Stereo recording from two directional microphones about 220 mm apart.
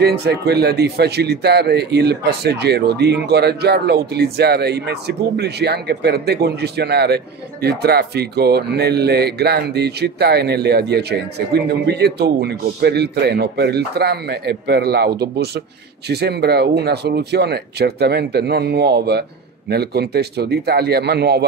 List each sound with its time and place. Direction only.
0.0 s speech: 50° right (ahead or behind)